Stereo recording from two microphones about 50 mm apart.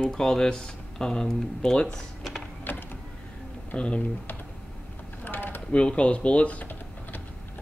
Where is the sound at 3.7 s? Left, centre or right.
Left.